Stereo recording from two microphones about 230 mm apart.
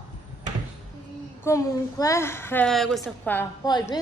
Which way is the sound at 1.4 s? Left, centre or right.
Centre.